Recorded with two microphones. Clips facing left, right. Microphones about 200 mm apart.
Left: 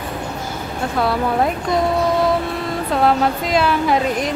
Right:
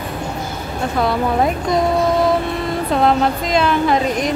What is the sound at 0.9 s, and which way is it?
Speech, centre (ahead or behind).